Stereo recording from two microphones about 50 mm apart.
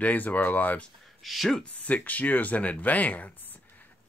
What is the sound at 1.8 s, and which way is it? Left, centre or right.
Speech, left.